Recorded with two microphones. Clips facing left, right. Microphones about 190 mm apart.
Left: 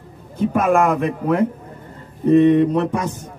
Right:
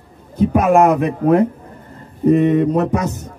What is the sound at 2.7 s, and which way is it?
Speech, 40° right (ahead or behind).